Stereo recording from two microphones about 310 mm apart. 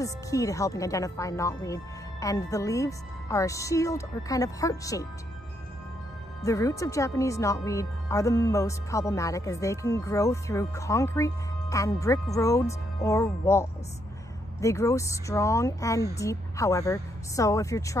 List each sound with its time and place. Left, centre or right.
0.0 s speech: centre
6.4 s speech: centre